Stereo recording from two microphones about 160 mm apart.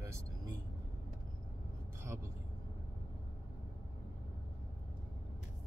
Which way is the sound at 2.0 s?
15° right (ahead or behind).